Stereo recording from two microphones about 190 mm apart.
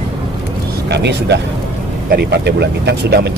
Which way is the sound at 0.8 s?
60° right (ahead or behind).